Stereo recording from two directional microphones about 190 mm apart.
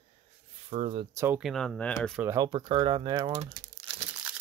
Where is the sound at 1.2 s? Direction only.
10° right (ahead or behind).